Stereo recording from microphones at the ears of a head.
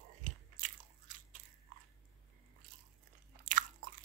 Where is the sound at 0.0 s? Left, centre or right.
Right.